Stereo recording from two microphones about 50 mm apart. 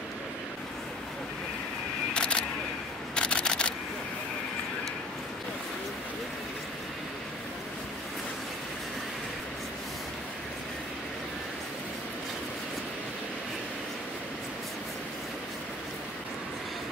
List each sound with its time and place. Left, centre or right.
2.1 s single-lens reflex camera: centre
3.2 s camera: centre